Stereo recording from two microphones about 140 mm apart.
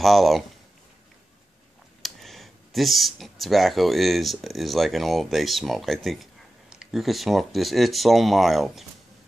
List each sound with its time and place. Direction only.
0.0 s speech: centre (ahead or behind)
2.0 s speech: centre (ahead or behind)